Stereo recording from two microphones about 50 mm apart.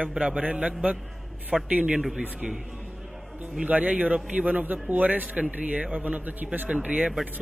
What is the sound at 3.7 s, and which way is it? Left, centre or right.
A man's voice, right.